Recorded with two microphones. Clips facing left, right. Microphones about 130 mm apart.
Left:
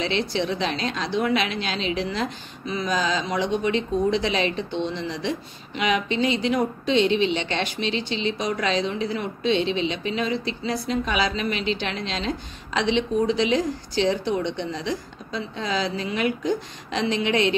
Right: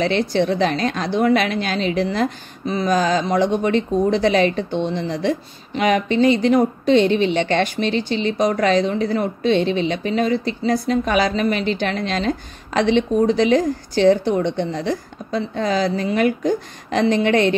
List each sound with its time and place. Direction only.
0.0 s a woman's voice: 50° right (ahead or behind)